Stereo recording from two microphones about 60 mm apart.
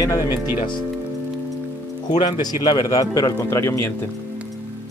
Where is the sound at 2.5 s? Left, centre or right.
Left.